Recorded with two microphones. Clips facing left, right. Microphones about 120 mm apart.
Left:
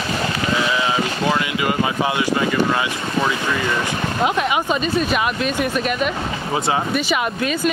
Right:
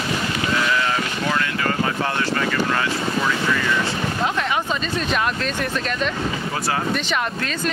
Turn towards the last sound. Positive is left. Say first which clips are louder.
# left 4 dB
turn(degrees=10)  # may be behind; listen again after turning